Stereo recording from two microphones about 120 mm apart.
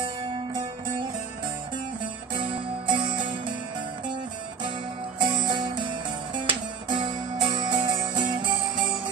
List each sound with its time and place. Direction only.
2.3 s music: 40° right (ahead or behind)
5.2 s music: 40° right (ahead or behind)